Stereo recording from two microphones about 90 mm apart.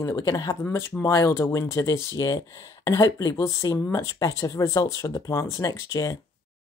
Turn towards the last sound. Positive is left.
turn(degrees=35)  # may be behind; listen again after turning